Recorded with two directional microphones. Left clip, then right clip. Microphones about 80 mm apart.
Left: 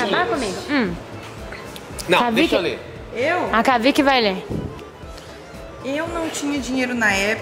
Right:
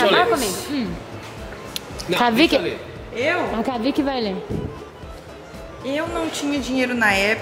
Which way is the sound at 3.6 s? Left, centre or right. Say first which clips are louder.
Left 6 dB; left.